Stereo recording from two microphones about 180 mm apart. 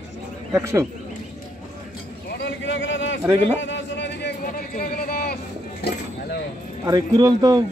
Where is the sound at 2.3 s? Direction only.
85° left.